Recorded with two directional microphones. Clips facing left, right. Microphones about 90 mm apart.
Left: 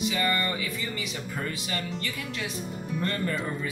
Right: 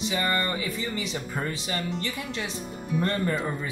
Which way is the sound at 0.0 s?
30° right (ahead or behind).